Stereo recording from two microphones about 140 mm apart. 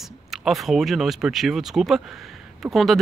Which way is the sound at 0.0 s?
Centre (ahead or behind).